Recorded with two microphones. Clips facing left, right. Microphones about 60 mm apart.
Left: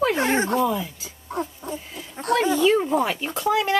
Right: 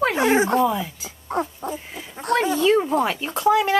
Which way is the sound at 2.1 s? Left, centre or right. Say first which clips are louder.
Even; centre.